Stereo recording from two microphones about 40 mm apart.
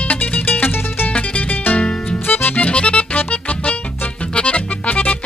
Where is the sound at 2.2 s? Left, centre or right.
Left.